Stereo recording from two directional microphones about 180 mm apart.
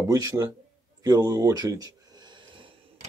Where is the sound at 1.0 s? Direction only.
20° right (ahead or behind).